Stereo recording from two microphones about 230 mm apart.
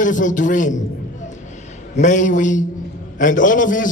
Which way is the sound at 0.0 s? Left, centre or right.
Left.